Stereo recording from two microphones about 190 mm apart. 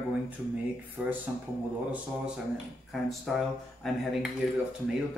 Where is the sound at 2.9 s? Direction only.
Centre (ahead or behind).